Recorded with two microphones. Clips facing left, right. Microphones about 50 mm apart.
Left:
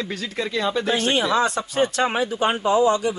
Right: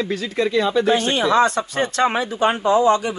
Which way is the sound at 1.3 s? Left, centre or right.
Right.